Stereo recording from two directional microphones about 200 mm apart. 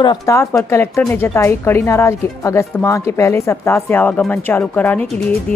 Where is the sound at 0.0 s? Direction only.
20° left (ahead or behind).